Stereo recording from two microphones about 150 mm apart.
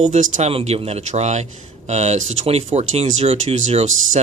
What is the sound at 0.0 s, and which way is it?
Speech, 50° right (ahead or behind).